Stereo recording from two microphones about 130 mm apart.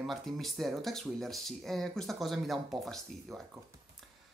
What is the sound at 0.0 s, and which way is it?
Speech, centre (ahead or behind).